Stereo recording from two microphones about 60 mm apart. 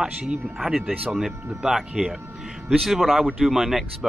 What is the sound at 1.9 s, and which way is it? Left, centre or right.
Speech, right.